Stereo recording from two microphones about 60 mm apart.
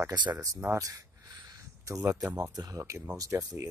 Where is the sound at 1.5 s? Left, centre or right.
Right.